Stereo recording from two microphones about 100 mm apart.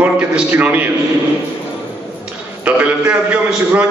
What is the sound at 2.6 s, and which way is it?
A man's voice, 15° right (ahead or behind).